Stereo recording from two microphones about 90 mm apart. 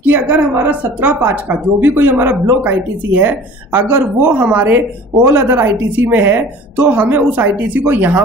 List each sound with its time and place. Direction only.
0.0 s a woman's voice: 20° right (ahead or behind)